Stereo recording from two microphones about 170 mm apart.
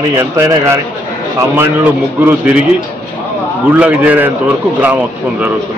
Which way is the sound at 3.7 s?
10° right (ahead or behind).